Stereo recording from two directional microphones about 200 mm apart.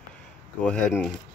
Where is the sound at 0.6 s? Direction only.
5° left (ahead or behind).